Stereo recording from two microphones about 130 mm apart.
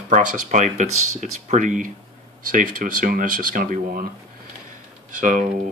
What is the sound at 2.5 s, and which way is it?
Speech, 90° right.